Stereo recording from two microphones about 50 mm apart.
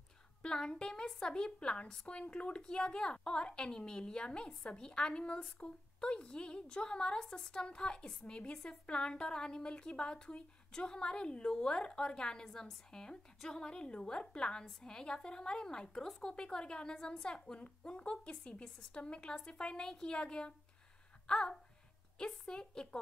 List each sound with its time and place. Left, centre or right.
0.4 s a woman's voice: centre